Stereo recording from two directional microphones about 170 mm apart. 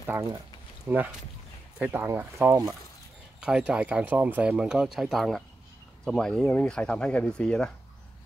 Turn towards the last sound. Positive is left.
turn(degrees=5)  # may be behind; listen again after turning